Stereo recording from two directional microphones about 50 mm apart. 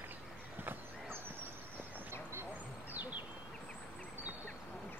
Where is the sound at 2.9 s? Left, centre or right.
Right.